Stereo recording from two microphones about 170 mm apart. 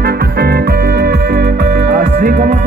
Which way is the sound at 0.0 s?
65° right (ahead or behind).